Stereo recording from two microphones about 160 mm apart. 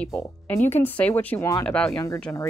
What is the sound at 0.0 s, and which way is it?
Speech, 5° left (ahead or behind).